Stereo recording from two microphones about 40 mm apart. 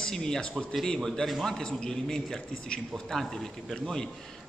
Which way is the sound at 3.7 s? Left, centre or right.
Centre.